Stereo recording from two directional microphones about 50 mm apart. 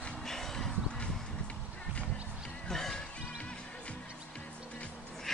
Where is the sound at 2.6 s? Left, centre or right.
Centre.